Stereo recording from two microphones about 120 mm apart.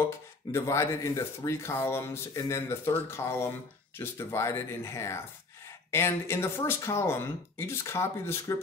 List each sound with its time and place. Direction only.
0.5 s speech: 25° left (ahead or behind)